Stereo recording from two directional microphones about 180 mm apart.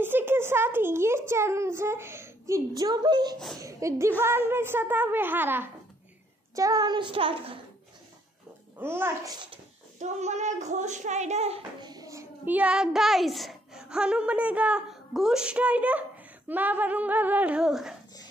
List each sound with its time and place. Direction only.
0.0 s a child's voice: 10° right (ahead or behind); by 7.5 s 30° right (ahead or behind)
8.7 s a child's voice: 10° right (ahead or behind)
9.9 s a child's voice: 40° right (ahead or behind)
11.9 s a child's voice: 20° right (ahead or behind); by 17.9 s 5° right (ahead or behind)